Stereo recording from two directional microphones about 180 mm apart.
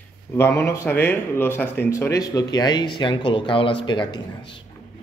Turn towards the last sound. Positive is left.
turn(degrees=25)  # may be behind; listen again after turning